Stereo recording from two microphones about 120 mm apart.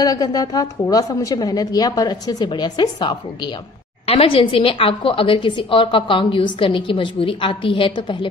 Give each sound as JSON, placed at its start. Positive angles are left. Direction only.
{"t": 0.0, "sound": "a woman's voice", "side_deg": 30}
{"t": 4.0, "sound": "a woman's voice", "side_deg": 55}